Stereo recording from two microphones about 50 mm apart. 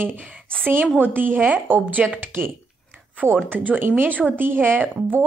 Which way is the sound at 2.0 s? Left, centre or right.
Centre.